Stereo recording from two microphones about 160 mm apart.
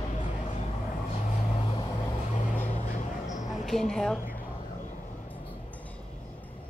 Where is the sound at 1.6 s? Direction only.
30° left (ahead or behind).